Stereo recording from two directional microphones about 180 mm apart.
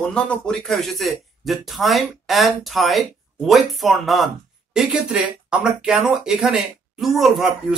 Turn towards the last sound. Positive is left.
turn(degrees=0)  # may be behind; listen again after turning